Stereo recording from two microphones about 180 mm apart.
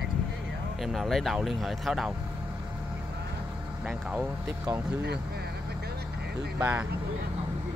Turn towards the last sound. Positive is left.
turn(degrees=-10)  # may be behind; listen again after turning